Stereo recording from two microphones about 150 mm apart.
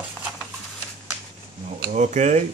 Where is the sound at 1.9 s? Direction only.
50° right (ahead or behind).